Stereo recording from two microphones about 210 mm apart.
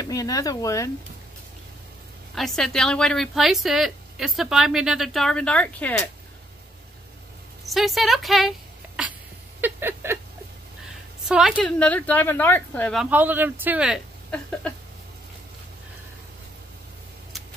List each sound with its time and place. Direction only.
0.0 s speech: 15° left (ahead or behind)
2.3 s speech: centre (ahead or behind)
7.6 s speech: centre (ahead or behind)
9.6 s a sound: 10° right (ahead or behind)
11.2 s a woman's voice: 5° right (ahead or behind)
12.9 s speech: 5° right (ahead or behind)